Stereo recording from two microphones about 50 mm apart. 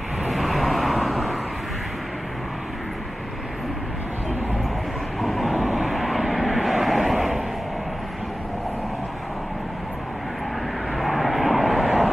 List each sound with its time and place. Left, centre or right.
0.2 s vehicle: centre
5.2 s vehicle: centre
11.0 s vehicle: centre